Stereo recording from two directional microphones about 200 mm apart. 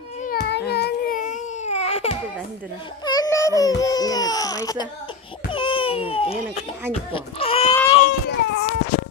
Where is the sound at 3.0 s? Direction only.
20° left (ahead or behind).